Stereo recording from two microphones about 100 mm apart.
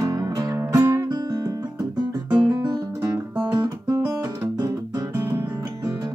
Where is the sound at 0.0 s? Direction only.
40° right (ahead or behind).